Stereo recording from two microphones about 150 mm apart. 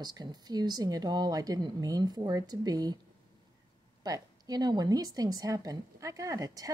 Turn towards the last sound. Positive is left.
turn(degrees=-25)  # may be behind; listen again after turning